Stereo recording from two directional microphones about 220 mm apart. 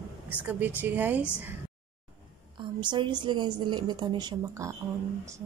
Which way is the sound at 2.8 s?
20° right (ahead or behind).